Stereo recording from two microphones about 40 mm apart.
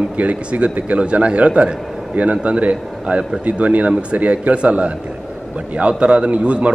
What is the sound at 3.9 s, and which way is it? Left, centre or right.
Speech, right.